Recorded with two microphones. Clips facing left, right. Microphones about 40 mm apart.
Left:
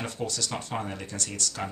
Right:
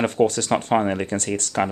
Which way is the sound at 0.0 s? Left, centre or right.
Right.